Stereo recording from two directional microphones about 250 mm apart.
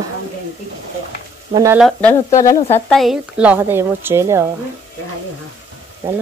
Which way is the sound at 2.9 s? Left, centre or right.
Centre.